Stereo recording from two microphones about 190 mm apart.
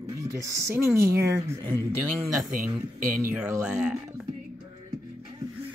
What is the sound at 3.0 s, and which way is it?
Speech, 45° right (ahead or behind).